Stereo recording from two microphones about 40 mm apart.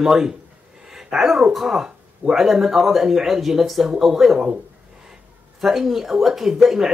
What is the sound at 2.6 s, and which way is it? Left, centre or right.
Speech, centre.